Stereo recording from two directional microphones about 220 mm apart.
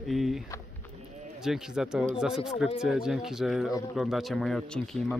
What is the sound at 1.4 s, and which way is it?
Speech, centre (ahead or behind).